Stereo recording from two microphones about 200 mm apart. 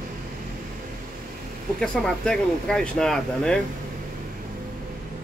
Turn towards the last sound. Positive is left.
turn(degrees=5)  # may be behind; listen again after turning